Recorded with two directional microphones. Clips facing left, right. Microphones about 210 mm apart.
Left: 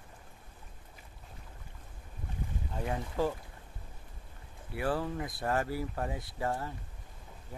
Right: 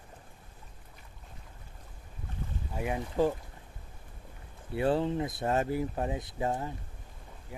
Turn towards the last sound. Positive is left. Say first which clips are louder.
# right 2 dB
turn(degrees=-10)  # may be behind; listen again after turning